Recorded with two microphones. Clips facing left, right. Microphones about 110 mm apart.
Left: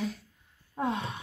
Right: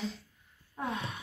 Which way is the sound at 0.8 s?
30° left (ahead or behind).